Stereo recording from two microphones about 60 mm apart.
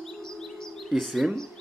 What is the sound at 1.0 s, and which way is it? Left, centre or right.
Speech, centre.